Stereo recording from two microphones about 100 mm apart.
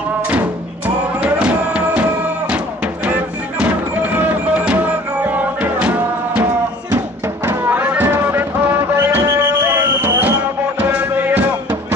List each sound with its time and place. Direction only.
0.3 s music: 15° right (ahead or behind)
3.1 s music: 15° right (ahead or behind)
7.4 s a sound: 20° right (ahead or behind)
10.8 s music: 15° right (ahead or behind)